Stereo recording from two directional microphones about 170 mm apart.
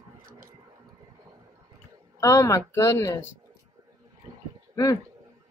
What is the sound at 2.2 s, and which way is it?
Speech, 20° left (ahead or behind).